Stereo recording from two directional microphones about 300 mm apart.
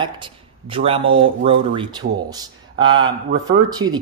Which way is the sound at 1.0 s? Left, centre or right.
Right.